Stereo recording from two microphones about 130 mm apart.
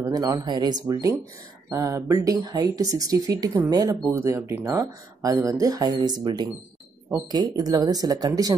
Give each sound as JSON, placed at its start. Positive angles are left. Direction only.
{"t": 0.0, "sound": "speech", "side_deg": -25}